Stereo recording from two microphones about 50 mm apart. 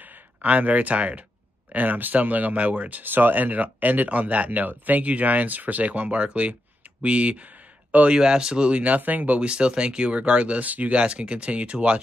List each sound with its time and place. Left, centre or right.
0.0 s a sound: right
0.5 s speech: right
8.1 s speech: centre; by 9.4 s right
9.4 s speech: right